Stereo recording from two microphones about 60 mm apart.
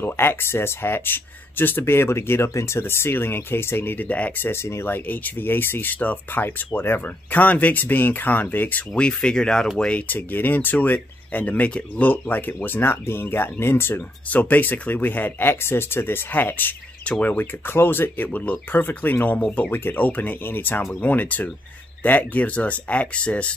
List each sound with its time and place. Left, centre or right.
0.0 s speech: left
4.5 s speech: left
8.9 s speech: centre
9.8 s speech: left
14.3 s speech: left
17.0 s speech: left